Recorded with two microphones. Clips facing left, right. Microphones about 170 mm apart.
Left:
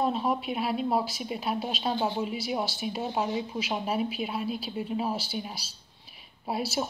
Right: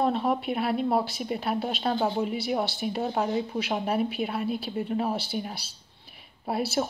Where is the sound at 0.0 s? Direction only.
60° right (ahead or behind).